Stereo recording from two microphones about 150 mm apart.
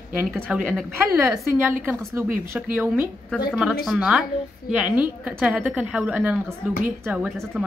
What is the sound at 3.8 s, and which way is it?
A woman's voice, 5° right (ahead or behind).